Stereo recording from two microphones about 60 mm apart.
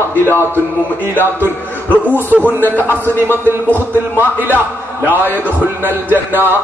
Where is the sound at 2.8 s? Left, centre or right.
Left.